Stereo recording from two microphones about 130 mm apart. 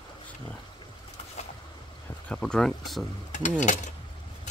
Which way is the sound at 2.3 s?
5° left (ahead or behind).